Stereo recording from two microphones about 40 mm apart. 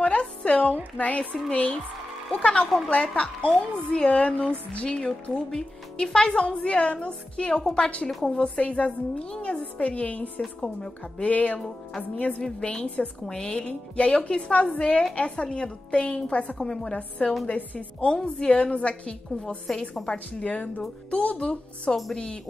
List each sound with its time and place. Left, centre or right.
0.0 s a sound: left
0.5 s a woman's voice: left
10.6 s a woman's voice: left
11.2 s a woman's voice: left
13.3 s a woman's voice: left
14.7 s a woman's voice: left
16.5 s speech: centre
18.0 s a woman's voice: left
19.7 s speech: centre
20.1 s a woman's voice: left